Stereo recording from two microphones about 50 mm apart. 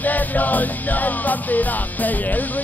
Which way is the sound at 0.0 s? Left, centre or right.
Left.